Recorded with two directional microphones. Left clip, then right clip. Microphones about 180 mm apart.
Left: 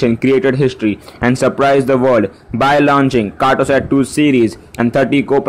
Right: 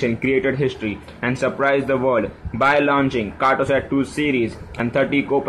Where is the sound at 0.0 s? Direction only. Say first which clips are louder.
Left 7 dB; 40° left (ahead or behind).